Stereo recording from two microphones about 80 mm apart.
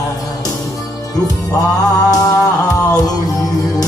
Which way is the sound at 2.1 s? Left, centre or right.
Left.